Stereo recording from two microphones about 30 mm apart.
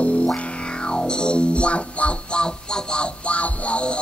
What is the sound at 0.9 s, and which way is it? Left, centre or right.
Music, left.